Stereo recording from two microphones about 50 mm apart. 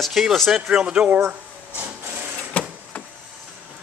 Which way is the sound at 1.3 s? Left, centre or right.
Right.